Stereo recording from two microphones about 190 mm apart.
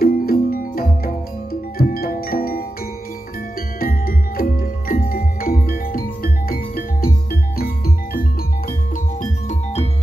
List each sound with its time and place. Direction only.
0.0 s music: 50° left (ahead or behind)
3.8 s music: 50° left (ahead or behind)